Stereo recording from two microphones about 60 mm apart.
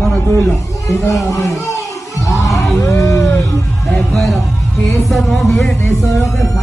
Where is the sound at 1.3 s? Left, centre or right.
Left.